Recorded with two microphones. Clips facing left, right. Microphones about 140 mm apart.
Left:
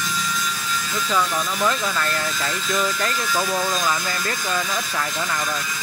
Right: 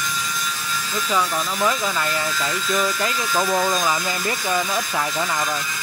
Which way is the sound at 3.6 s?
15° right (ahead or behind).